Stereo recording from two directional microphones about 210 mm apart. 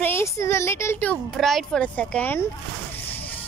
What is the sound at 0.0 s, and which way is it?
Speech, 10° left (ahead or behind).